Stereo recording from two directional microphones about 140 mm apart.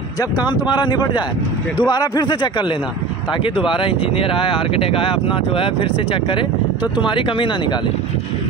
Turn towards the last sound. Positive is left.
turn(degrees=35)  # may be behind; listen again after turning